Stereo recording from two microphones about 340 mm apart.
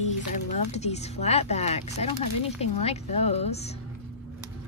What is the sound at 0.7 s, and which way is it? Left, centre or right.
A woman's voice, centre.